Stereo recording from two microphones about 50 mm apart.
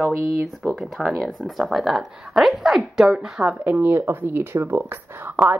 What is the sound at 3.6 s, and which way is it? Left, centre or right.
Speech, right.